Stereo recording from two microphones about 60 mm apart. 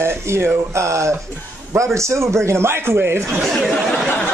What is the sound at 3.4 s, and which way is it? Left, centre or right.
Speech, centre.